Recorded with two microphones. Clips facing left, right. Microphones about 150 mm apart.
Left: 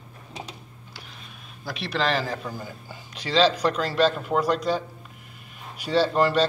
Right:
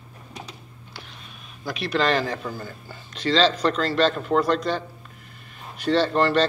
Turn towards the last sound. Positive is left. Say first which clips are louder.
# right 1 dB
turn(degrees=5)  # may be behind; listen again after turning